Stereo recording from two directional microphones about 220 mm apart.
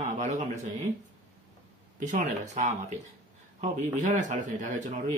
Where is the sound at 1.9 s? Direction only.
35° right (ahead or behind).